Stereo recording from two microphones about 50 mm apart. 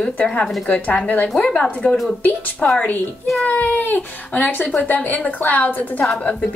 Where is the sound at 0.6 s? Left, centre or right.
Left.